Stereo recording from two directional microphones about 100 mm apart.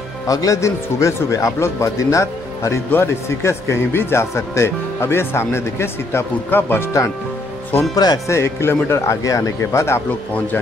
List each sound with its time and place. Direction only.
0.3 s a man's voice: 35° left (ahead or behind)
7.9 s a man's voice: 40° left (ahead or behind)
8.3 s speech: 25° left (ahead or behind)